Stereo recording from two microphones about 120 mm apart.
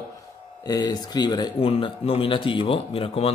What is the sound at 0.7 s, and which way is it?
Speech, 35° left (ahead or behind).